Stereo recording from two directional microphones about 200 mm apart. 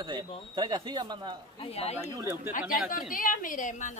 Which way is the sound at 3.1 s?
45° left (ahead or behind).